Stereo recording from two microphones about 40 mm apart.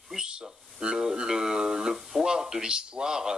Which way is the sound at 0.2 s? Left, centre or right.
Right.